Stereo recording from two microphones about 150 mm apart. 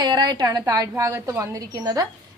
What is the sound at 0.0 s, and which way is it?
A woman's voice, 30° right (ahead or behind).